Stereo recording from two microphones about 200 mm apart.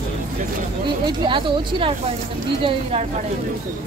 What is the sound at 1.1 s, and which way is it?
Speech, 25° right (ahead or behind).